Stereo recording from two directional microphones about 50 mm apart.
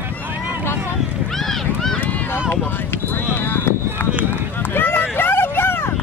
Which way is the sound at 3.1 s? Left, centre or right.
Left.